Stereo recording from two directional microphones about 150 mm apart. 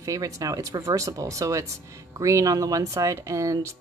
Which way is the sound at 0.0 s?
25° right (ahead or behind).